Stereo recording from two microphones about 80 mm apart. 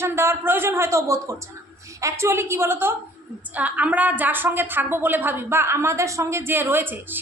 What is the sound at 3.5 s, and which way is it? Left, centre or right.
A woman's voice, centre.